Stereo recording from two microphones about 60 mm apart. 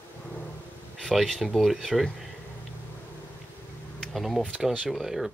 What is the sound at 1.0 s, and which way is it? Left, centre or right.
Speech, centre.